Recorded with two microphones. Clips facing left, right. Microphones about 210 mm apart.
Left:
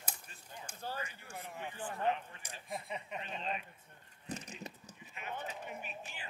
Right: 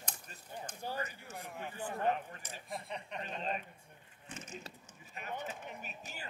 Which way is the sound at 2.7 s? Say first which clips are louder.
Left 1 dB; 5° left (ahead or behind).